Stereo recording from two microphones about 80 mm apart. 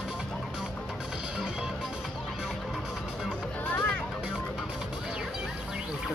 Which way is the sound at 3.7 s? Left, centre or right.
Centre.